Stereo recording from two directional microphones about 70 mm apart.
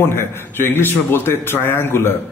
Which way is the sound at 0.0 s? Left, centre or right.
Left.